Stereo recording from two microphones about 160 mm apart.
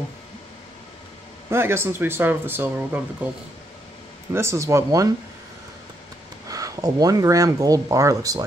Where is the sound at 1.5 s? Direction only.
15° right (ahead or behind).